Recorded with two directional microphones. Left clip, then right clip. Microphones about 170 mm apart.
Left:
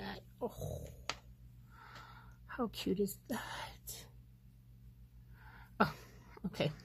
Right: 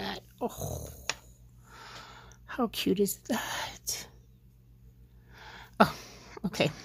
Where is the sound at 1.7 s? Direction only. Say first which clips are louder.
Right 8 dB; 15° right (ahead or behind).